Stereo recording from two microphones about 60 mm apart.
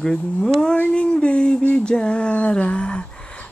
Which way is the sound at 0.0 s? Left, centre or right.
Centre.